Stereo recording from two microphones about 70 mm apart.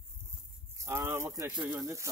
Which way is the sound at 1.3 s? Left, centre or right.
Right.